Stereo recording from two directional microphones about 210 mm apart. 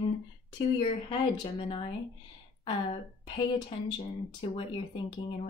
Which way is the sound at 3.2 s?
20° left (ahead or behind).